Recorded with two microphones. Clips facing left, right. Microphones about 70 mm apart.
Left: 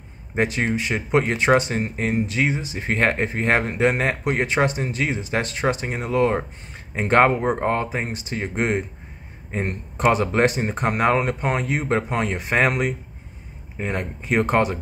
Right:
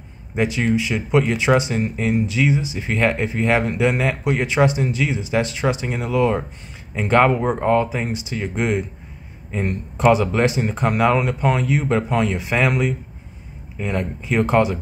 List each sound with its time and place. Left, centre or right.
0.4 s a man's voice: left